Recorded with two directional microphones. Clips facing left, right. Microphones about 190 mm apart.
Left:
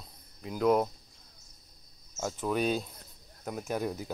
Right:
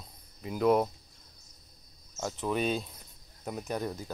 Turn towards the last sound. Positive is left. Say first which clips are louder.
# left 1 dB
turn(degrees=10)  # may be behind; listen again after turning